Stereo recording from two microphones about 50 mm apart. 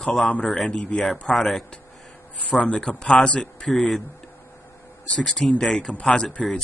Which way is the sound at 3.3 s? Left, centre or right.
Centre.